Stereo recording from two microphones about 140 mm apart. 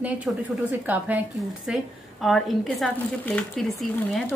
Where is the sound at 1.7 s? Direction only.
Centre (ahead or behind).